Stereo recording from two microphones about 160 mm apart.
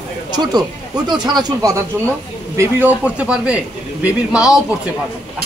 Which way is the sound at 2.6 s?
10° right (ahead or behind).